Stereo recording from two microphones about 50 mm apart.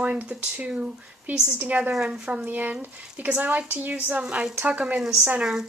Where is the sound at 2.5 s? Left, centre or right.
Right.